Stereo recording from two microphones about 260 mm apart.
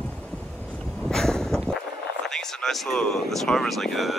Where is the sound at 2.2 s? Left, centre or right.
Centre.